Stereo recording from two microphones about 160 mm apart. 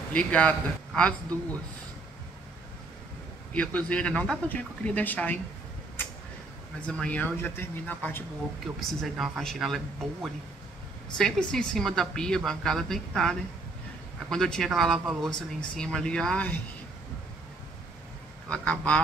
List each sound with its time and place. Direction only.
0.1 s speech: 10° left (ahead or behind)
3.5 s speech: 5° left (ahead or behind)
6.9 s speech: 5° left (ahead or behind)
8.7 s a woman's voice: centre (ahead or behind)
11.1 s a woman's voice: 5° left (ahead or behind)
18.5 s speech: 5° left (ahead or behind)